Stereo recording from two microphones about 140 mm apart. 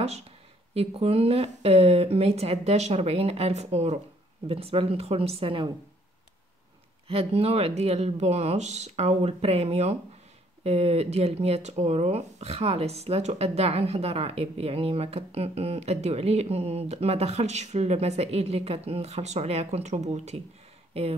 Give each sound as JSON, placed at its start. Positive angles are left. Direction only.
{"t": 0.7, "sound": "speech", "side_deg": -45}
{"t": 7.1, "sound": "speech", "side_deg": -45}